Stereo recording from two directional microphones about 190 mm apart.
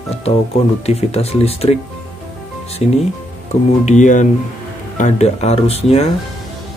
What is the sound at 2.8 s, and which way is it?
Speech, 40° left (ahead or behind).